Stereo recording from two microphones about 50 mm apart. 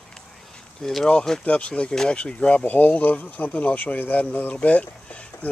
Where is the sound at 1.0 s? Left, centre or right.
Centre.